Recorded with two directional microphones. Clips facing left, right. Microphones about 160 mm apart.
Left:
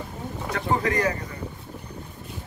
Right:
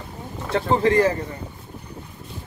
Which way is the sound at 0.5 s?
30° right (ahead or behind).